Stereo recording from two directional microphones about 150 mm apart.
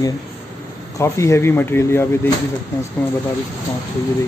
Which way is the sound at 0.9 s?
20° left (ahead or behind).